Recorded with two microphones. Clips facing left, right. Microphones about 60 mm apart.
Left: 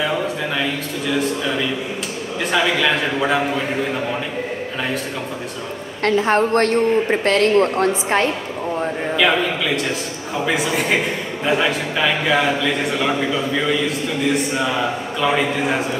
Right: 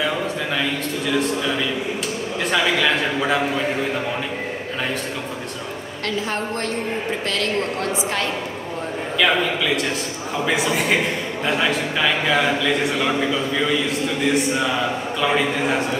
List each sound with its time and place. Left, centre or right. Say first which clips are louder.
0.0 s a sound: left 2 dB; centre
1.1 s a man's voice: left 1 dB; centre
6.0 s a woman's voice: left 9 dB; left
7.2 s a woman's voice: left 8 dB; left
10.3 s a man's voice: left 1 dB; centre